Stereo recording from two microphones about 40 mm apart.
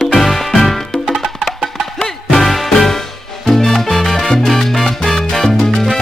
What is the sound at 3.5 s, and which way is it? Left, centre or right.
Salsa music, centre.